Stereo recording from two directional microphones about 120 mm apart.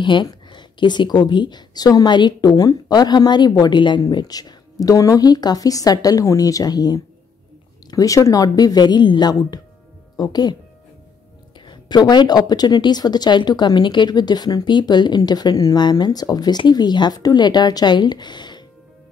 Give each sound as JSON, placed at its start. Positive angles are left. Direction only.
{"t": 0.0, "sound": "speech", "side_deg": 40}
{"t": 11.6, "sound": "speech", "side_deg": 40}